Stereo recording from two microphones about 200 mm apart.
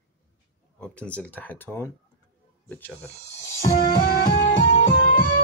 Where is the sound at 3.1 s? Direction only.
35° left (ahead or behind).